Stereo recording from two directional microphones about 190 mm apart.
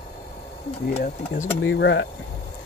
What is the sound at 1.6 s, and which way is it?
Speech, 75° left (ahead or behind).